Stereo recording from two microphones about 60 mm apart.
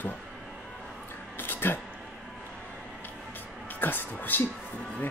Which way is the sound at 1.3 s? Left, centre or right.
Left.